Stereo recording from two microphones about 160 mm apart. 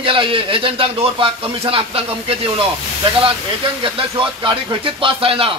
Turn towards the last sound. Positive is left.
turn(degrees=-35)  # may be behind; listen again after turning